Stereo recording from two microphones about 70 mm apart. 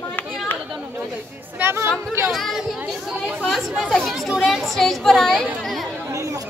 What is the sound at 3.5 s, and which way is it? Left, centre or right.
Chatter, centre.